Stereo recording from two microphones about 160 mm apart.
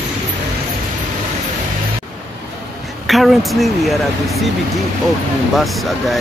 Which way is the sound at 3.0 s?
Centre (ahead or behind).